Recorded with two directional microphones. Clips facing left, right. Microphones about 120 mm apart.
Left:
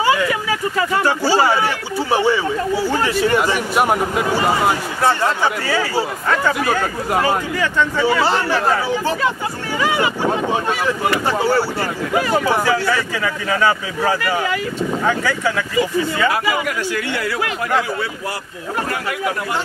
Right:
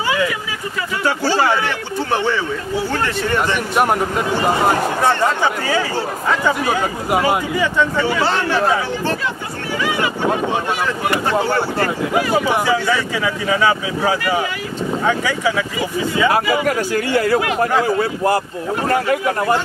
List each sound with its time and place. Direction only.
1.0 s a man's voice: 10° left (ahead or behind)
6.2 s a man's voice: 10° right (ahead or behind)
8.0 s speech: 10° left (ahead or behind)
12.4 s a man's voice: 15° right (ahead or behind)
16.3 s speech: 40° right (ahead or behind)